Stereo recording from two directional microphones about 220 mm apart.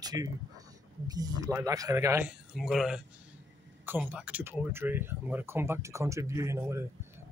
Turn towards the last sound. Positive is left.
turn(degrees=-15)  # may be behind; listen again after turning